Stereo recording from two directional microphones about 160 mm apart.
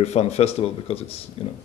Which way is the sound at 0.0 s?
40° left (ahead or behind).